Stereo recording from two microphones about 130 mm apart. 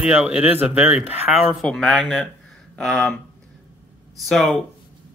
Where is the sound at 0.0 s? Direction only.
5° right (ahead or behind).